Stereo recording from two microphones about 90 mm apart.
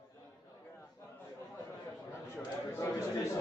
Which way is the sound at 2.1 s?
30° left (ahead or behind).